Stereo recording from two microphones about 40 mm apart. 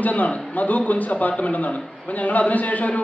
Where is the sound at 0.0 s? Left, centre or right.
Left.